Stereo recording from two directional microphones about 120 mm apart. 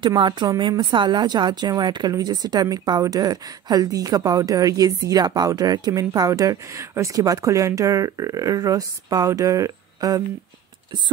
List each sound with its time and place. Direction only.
0.2 s speech: 35° right (ahead or behind)